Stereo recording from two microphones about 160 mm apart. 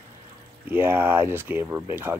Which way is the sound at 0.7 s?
15° right (ahead or behind).